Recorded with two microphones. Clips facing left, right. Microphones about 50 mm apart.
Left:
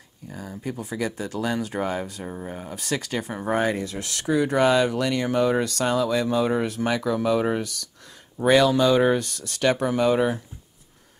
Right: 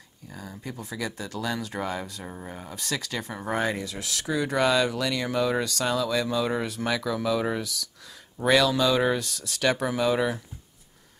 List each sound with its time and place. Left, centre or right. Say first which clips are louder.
0.3 s speech: left 4 dB; centre
0.7 s speech: left 5 dB; centre
2.0 s speech: left 5 dB; centre; by 7.6 s left
8.4 s speech: left 4 dB; centre